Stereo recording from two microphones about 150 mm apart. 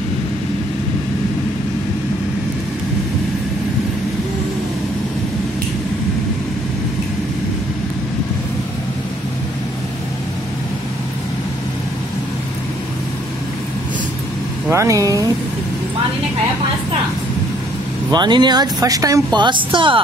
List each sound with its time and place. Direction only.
14.7 s speech: 20° right (ahead or behind)
18.1 s speech: 30° right (ahead or behind)